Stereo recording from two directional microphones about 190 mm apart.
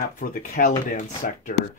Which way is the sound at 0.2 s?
45° left (ahead or behind).